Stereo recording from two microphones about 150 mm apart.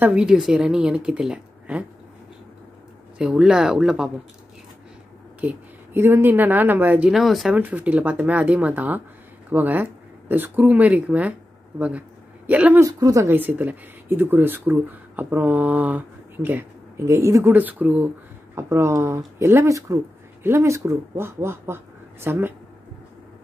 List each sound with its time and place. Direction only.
0.0 s a woman's voice: 5° right (ahead or behind)
3.2 s a woman's voice: 5° right (ahead or behind)
5.4 s speech: 15° right (ahead or behind)
12.4 s speech: 10° right (ahead or behind)
12.8 s speech: 20° right (ahead or behind)